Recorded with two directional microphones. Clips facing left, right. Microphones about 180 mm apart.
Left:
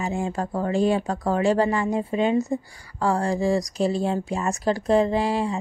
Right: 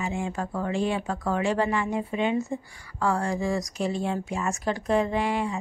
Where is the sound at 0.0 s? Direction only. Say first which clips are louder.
Left 3 dB; 40° left (ahead or behind).